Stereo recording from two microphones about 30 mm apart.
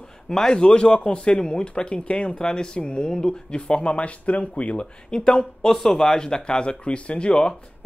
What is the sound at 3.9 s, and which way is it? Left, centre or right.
Speech, left.